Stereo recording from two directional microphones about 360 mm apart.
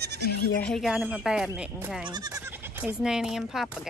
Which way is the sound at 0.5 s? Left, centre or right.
Centre.